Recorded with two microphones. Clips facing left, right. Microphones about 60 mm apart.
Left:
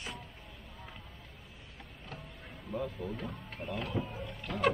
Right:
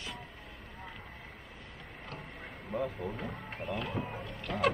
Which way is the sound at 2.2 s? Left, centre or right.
Right.